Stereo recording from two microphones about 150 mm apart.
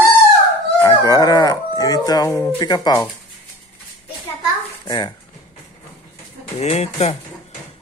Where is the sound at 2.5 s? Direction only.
25° left (ahead or behind).